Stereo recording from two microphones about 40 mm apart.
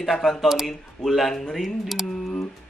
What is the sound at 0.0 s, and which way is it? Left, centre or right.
Speech, centre.